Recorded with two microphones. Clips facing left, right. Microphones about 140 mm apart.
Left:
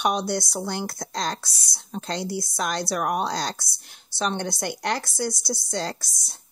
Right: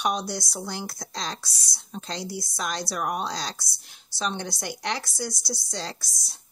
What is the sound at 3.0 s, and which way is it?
Speech, 50° left (ahead or behind).